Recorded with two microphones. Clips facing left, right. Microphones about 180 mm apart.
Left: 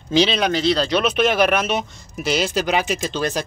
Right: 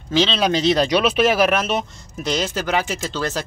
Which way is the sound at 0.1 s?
15° left (ahead or behind).